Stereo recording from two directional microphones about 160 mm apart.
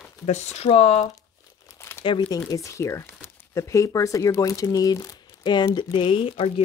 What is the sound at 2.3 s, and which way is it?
Speech, 20° left (ahead or behind).